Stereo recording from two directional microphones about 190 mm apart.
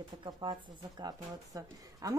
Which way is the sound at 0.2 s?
25° right (ahead or behind).